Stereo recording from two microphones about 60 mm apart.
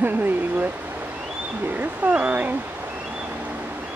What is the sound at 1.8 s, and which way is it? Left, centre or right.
Speech, right.